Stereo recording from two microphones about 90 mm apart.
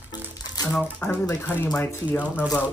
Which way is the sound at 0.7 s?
10° left (ahead or behind).